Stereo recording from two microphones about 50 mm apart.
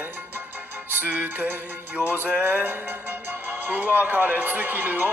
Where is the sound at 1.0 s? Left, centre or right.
Right.